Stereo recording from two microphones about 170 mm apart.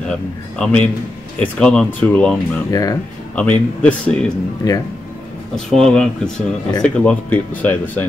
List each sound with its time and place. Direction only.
0.6 s speech: 5° left (ahead or behind)
2.7 s speech: 20° left (ahead or behind)
3.3 s speech: 10° left (ahead or behind)
4.6 s speech: 20° left (ahead or behind)
5.7 s speech: 5° left (ahead or behind)